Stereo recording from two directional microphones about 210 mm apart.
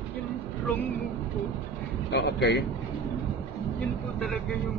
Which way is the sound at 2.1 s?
55° left (ahead or behind).